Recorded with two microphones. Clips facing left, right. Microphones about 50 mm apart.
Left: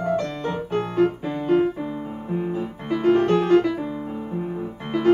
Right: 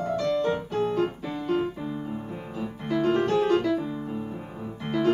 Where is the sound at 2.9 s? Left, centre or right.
Left.